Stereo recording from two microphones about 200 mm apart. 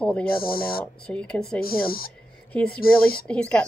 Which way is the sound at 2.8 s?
50° left (ahead or behind).